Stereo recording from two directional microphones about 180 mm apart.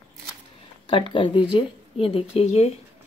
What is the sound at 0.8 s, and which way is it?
A woman's voice, 30° left (ahead or behind).